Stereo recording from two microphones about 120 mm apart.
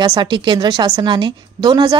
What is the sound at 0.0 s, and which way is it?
A woman's voice, 35° right (ahead or behind).